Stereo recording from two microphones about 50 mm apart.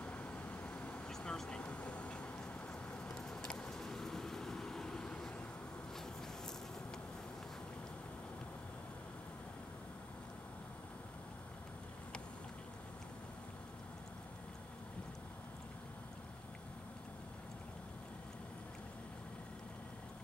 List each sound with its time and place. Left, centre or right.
0.0 s vehicle: left
1.0 s vehicle: centre
1.6 s a sound: left
3.1 s vehicle: centre